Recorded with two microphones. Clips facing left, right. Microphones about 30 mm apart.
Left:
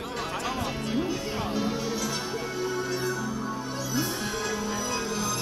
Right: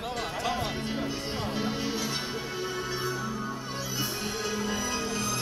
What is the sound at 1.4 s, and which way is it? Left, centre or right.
Music, centre.